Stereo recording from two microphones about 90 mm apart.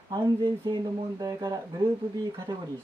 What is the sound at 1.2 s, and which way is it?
Speech, 40° right (ahead or behind).